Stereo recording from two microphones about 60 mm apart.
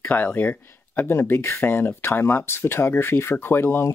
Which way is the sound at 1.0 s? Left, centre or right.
Left.